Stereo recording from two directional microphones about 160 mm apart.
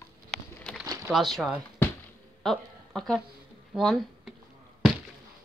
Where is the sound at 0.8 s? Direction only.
20° right (ahead or behind).